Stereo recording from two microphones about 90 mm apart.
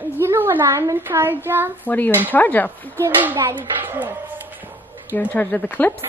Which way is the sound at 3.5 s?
20° right (ahead or behind).